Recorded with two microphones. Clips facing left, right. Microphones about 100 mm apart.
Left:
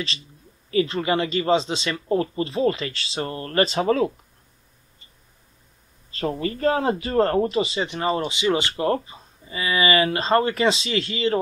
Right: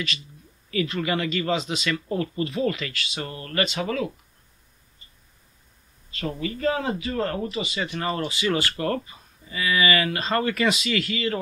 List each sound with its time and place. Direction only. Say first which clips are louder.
0.7 s speech: left 4 dB; 30° left (ahead or behind)
6.1 s a man's voice: left 4 dB; 35° left (ahead or behind)
7.5 s speech: left 5 dB; 30° left (ahead or behind)